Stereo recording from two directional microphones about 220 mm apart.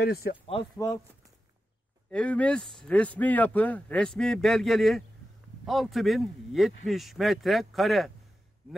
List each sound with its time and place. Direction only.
0.0 s speech: 45° left (ahead or behind)
2.0 s speech: 5° left (ahead or behind)